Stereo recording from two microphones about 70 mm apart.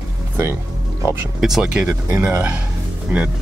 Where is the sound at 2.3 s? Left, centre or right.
Right.